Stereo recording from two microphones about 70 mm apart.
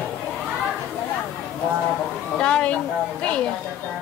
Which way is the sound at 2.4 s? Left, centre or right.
Centre.